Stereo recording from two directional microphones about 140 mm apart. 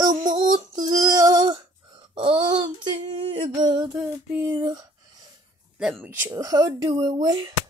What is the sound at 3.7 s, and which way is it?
Speech, 30° right (ahead or behind).